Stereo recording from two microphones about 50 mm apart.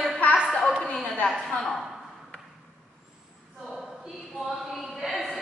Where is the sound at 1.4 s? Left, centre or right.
Centre.